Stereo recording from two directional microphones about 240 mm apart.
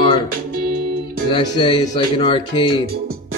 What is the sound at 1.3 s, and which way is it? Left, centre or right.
Speech, centre.